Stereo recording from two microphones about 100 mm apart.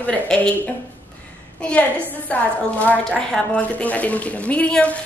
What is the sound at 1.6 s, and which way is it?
A woman's voice, 15° left (ahead or behind).